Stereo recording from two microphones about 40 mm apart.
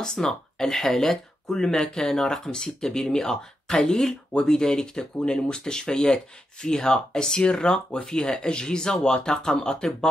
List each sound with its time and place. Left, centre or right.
0.0 s speech: centre